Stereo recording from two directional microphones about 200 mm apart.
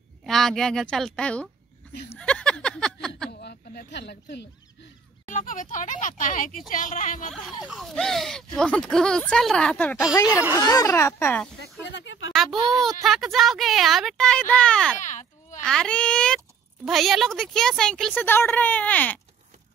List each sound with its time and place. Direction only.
0.2 s speech: centre (ahead or behind)
2.0 s a sound: 5° left (ahead or behind)
3.3 s a sound: 50° left (ahead or behind)
5.3 s speech: 40° left (ahead or behind)
7.6 s speech: centre (ahead or behind)
10.5 s speech: 20° left (ahead or behind)
11.9 s speech: 65° left (ahead or behind)
12.4 s speech: centre (ahead or behind)
15.0 s a sound: 40° left (ahead or behind)
15.6 s speech: 5° left (ahead or behind)